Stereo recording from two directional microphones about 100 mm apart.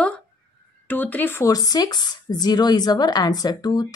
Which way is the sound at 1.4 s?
40° left (ahead or behind).